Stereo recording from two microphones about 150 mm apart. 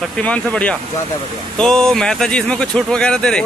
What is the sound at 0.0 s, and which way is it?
Speech, 5° left (ahead or behind).